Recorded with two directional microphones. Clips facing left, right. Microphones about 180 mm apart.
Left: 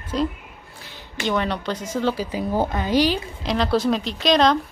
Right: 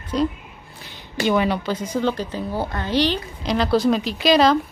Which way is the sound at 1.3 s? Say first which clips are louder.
Right 3 dB; 5° right (ahead or behind).